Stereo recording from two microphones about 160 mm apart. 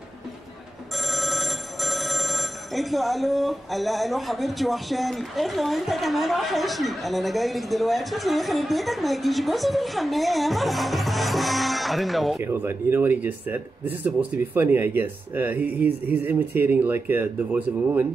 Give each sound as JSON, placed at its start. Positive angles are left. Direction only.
{"t": 0.9, "sound": "speech", "side_deg": 0}
{"t": 12.4, "sound": "speech", "side_deg": -15}